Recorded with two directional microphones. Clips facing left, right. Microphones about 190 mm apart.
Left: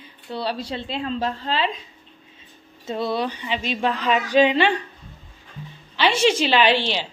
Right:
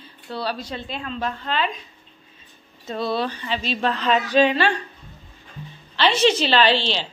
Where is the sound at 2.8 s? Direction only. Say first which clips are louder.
Even; 20° left (ahead or behind).